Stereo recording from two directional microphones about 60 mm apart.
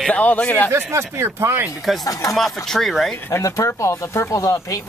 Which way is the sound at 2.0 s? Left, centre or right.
Left.